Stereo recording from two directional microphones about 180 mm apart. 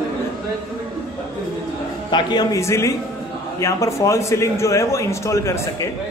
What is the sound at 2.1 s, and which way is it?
A man's voice, 25° left (ahead or behind).